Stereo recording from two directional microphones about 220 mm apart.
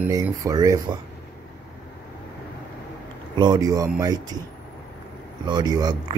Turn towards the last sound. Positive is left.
turn(degrees=-15)  # may be behind; listen again after turning